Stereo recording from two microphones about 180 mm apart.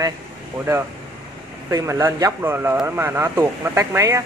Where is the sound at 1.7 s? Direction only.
15° right (ahead or behind).